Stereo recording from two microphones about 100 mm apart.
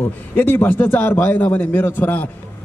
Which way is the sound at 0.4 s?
20° left (ahead or behind).